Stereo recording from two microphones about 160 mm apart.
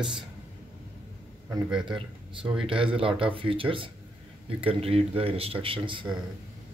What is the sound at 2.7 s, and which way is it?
Speech, 35° right (ahead or behind).